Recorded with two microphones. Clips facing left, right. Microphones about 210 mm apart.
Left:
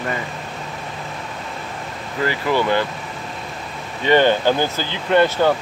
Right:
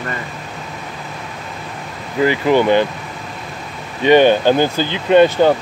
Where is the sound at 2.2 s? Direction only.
20° right (ahead or behind).